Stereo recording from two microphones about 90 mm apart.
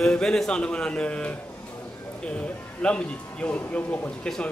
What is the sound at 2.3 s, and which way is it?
Speech, 15° left (ahead or behind).